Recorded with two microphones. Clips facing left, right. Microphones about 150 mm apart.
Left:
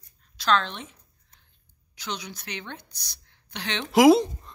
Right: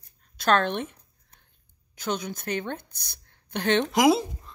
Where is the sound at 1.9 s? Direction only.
50° right (ahead or behind).